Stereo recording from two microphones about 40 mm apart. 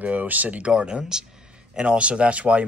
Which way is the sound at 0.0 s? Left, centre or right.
Right.